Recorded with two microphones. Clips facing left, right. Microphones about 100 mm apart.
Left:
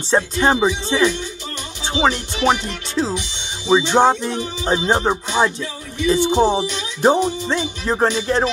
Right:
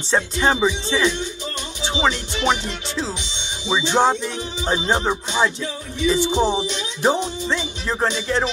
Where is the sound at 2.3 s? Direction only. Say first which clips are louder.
Left 3 dB; 45° left (ahead or behind).